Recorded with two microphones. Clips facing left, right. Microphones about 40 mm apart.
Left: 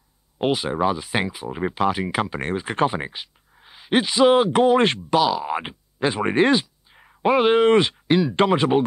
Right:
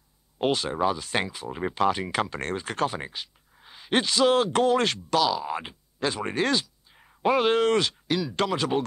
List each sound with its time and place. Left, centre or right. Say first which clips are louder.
0.4 s speech: left 3 dB; centre